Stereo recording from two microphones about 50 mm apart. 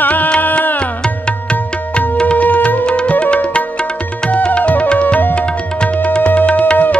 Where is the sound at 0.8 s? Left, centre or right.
Centre.